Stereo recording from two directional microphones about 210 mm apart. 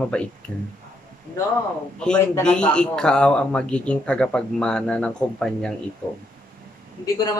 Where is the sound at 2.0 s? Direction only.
5° left (ahead or behind).